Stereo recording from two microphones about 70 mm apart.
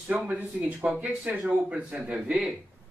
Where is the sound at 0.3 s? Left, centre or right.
Right.